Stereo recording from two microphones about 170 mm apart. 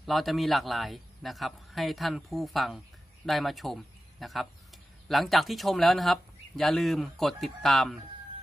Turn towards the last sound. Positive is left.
turn(degrees=0)  # may be behind; listen again after turning